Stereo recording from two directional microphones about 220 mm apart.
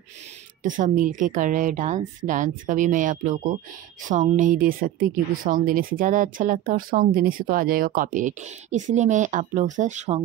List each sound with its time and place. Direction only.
0.7 s a woman's voice: 35° right (ahead or behind)